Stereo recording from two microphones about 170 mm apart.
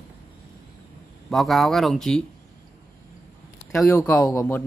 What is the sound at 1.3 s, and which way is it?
Speech, centre (ahead or behind).